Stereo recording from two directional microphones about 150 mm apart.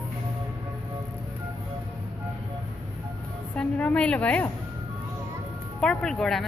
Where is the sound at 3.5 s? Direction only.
10° left (ahead or behind).